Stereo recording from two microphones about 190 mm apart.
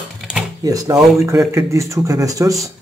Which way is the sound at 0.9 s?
Centre (ahead or behind).